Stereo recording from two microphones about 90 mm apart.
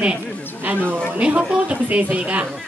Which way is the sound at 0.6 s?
20° right (ahead or behind).